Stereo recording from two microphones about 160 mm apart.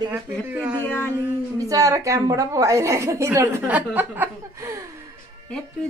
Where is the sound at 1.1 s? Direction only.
20° right (ahead or behind).